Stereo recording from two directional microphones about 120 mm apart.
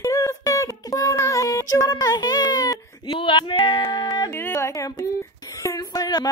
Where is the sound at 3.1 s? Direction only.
45° left (ahead or behind).